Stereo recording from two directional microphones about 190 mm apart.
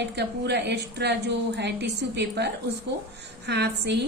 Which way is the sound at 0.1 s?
60° right (ahead or behind).